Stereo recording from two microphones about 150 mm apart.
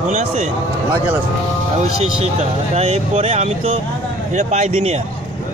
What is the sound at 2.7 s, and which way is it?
Speech, 45° right (ahead or behind).